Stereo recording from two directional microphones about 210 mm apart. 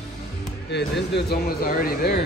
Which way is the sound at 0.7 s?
55° left (ahead or behind).